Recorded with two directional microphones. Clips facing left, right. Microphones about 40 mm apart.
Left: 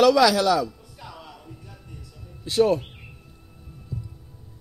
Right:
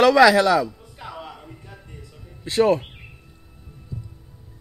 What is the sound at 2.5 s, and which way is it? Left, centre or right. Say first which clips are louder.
Speech: right 2 dB; right.